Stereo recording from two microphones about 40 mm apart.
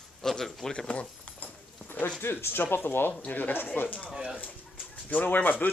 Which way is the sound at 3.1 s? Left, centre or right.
Left.